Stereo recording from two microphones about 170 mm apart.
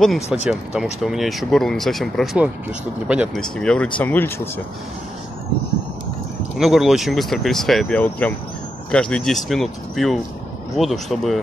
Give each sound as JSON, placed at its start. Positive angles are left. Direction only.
{"t": 0.0, "sound": "speech", "side_deg": 0}
{"t": 6.6, "sound": "speech", "side_deg": 0}